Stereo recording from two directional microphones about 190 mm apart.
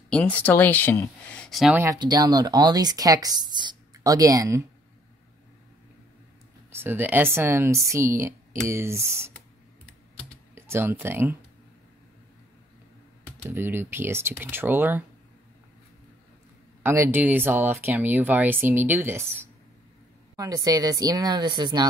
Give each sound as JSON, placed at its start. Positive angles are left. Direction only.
{"t": 0.1, "sound": "speech", "side_deg": 10}
{"t": 1.5, "sound": "speech", "side_deg": 0}
{"t": 1.8, "sound": "speech", "side_deg": -20}
{"t": 6.7, "sound": "speech", "side_deg": -10}
{"t": 10.5, "sound": "speech", "side_deg": -10}
{"t": 13.4, "sound": "speech", "side_deg": -10}
{"t": 16.8, "sound": "speech", "side_deg": -15}
{"t": 20.3, "sound": "speech", "side_deg": -20}